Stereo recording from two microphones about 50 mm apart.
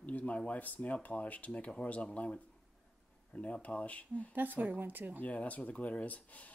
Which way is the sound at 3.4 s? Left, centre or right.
Left.